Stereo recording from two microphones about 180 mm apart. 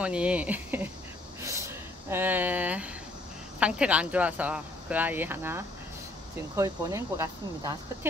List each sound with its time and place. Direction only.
0.0 s speech: 5° right (ahead or behind)
1.4 s a sound: 15° right (ahead or behind)
3.5 s speech: 5° right (ahead or behind)